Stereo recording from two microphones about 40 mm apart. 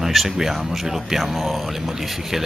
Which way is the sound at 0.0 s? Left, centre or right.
Centre.